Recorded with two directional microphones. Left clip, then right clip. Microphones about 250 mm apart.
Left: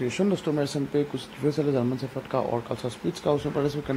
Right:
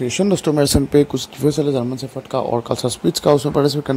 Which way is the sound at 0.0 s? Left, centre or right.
Right.